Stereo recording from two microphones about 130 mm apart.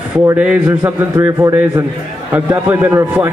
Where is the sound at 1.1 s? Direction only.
25° right (ahead or behind).